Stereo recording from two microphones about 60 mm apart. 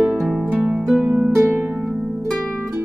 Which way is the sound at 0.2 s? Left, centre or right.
Centre.